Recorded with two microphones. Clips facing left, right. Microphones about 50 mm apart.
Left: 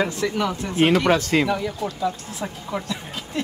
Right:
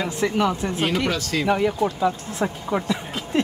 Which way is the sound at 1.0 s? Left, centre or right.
Left.